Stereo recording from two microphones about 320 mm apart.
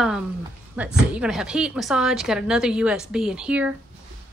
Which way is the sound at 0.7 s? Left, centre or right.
Centre.